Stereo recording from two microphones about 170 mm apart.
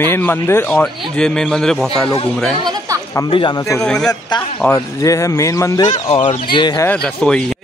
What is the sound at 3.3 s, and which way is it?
Speech, 30° left (ahead or behind).